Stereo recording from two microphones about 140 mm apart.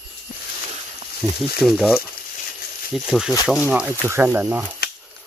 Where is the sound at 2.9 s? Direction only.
5° right (ahead or behind).